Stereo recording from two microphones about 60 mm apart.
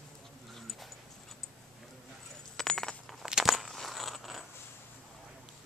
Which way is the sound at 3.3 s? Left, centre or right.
Centre.